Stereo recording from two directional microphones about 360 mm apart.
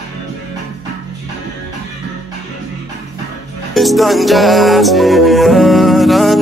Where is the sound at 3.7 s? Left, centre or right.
Centre.